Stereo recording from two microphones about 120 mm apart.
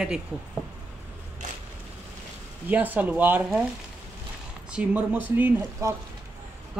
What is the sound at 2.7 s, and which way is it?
Speech, 15° right (ahead or behind).